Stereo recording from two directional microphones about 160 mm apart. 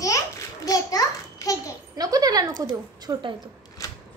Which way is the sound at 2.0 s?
25° right (ahead or behind).